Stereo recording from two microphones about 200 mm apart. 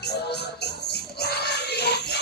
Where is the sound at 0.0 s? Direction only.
55° left (ahead or behind).